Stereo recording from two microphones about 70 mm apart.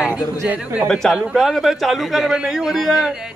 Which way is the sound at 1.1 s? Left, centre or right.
Centre.